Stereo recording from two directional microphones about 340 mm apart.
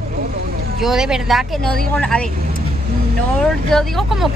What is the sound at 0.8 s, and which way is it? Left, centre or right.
Speech, centre.